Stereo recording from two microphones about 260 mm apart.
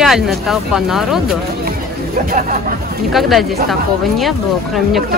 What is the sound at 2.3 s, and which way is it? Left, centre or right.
Speech, right.